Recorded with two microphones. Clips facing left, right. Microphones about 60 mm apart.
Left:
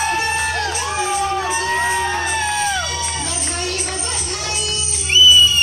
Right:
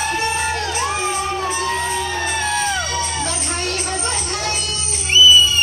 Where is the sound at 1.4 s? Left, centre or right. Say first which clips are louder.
Left 2 dB; left.